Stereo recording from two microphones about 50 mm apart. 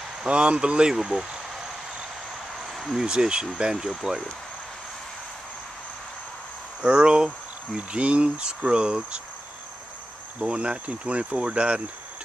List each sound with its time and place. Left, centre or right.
0.2 s speech: right
0.9 s speech: centre
2.6 s a sound: centre
3.0 s speech: centre
6.8 s speech: centre
10.4 s speech: centre